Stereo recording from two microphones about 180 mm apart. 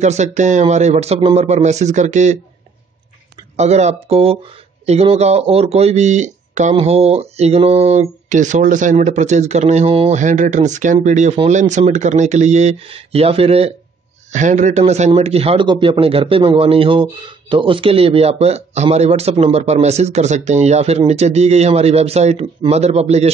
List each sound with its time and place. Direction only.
0.0 s a man's voice: 40° right (ahead or behind)
3.5 s a man's voice: 40° right (ahead or behind)